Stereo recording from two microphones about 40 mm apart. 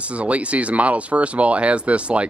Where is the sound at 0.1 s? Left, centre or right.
Right.